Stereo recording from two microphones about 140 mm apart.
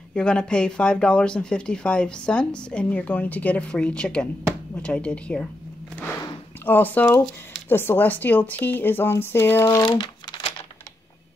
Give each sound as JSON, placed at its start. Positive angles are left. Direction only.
{"t": 0.1, "sound": "speech", "side_deg": 5}
{"t": 6.6, "sound": "speech", "side_deg": 15}
{"t": 9.8, "sound": "crumpling", "side_deg": 35}